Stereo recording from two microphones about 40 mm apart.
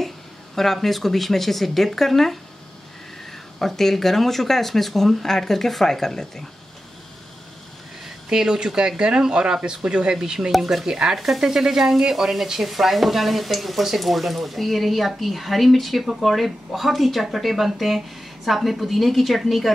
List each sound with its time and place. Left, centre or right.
0.6 s speech: centre
3.5 s speech: centre
8.3 s speech: centre
10.5 s speech: centre